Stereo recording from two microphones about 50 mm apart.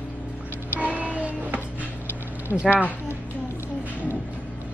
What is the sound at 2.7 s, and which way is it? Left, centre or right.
Speech, right.